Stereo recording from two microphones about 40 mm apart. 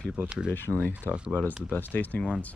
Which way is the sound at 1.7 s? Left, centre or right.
Left.